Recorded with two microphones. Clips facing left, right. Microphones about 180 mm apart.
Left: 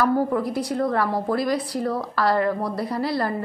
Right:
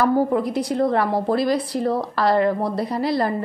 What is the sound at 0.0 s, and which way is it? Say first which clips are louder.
A woman's voice: right 2 dB; 20° right (ahead or behind).